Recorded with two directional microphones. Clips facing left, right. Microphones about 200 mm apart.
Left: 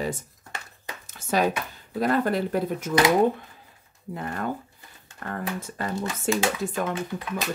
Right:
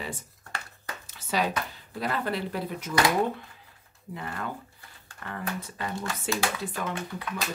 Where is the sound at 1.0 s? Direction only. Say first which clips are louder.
Left 5 dB; 45° left (ahead or behind).